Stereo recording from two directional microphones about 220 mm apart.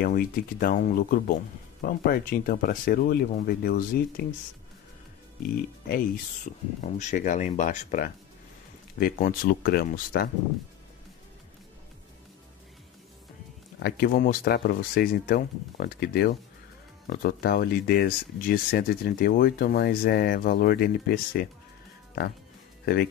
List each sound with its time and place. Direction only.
0.0 s speech: 40° left (ahead or behind)
5.4 s speech: 40° left (ahead or behind)
13.8 s speech: 45° left (ahead or behind)